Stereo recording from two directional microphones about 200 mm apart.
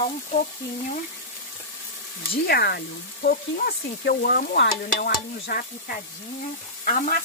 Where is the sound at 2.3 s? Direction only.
50° left (ahead or behind).